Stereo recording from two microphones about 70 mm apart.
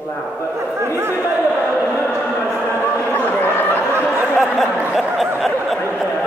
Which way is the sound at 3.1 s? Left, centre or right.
Left.